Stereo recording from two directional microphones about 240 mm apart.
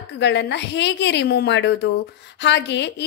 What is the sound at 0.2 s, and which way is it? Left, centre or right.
A woman's voice, left.